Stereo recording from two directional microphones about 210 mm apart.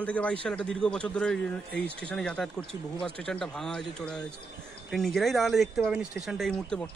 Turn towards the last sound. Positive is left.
turn(degrees=5)  # may be behind; listen again after turning